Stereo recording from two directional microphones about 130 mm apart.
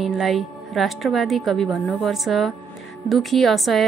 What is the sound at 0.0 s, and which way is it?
A woman's voice, centre (ahead or behind).